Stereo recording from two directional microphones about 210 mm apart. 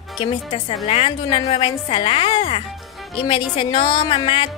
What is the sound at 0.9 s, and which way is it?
Speech, 30° left (ahead or behind).